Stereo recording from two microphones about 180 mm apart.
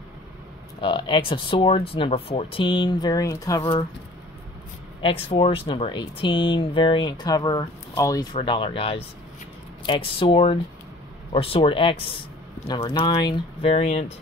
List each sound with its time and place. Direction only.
0.7 s speech: 25° left (ahead or behind)
5.0 s speech: 30° left (ahead or behind)